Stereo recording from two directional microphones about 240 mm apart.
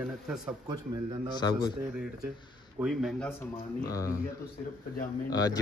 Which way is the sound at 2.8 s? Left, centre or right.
Centre.